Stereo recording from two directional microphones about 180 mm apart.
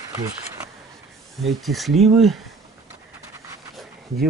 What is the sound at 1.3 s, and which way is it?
Speech, centre (ahead or behind).